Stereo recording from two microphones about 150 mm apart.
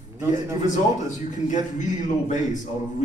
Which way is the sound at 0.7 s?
55° left (ahead or behind).